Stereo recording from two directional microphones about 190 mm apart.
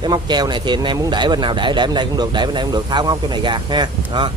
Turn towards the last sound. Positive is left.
turn(degrees=-25)  # may be behind; listen again after turning